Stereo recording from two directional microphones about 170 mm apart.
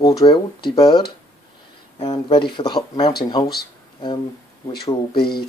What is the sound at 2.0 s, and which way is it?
Speech, 25° left (ahead or behind).